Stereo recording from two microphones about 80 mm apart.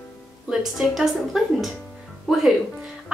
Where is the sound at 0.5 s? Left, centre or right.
Centre.